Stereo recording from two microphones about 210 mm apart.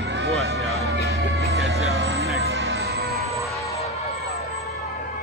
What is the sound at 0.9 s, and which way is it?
Music, 50° right (ahead or behind).